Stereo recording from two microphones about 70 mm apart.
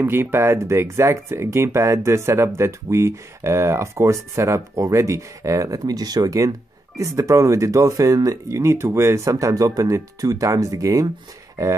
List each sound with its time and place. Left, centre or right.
0.0 s speech: right